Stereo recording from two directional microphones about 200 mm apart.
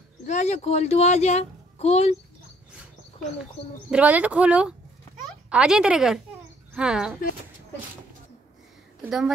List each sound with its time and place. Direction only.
0.3 s a woman's voice: 35° left (ahead or behind)
3.9 s speech: 5° right (ahead or behind)
9.0 s speech: 5° right (ahead or behind)